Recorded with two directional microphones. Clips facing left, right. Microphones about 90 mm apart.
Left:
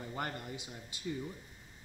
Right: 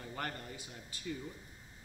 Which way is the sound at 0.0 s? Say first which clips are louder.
Left 2 dB; 15° left (ahead or behind).